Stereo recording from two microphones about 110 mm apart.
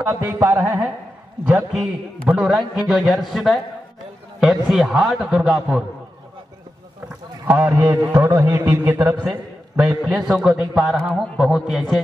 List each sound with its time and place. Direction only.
0.0 s a man's voice: 25° right (ahead or behind)
1.7 s a man's voice: 5° right (ahead or behind)
7.4 s a man's voice: 20° right (ahead or behind)
10.0 s a man's voice: 5° right (ahead or behind)